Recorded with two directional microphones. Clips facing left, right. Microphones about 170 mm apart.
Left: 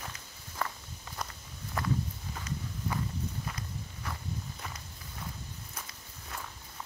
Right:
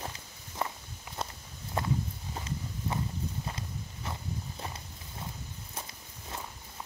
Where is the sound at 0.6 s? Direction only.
20° right (ahead or behind).